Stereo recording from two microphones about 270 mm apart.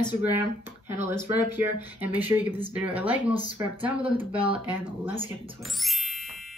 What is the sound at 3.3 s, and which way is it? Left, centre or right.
Speech, centre.